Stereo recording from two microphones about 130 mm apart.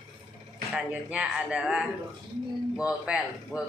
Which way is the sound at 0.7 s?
10° right (ahead or behind).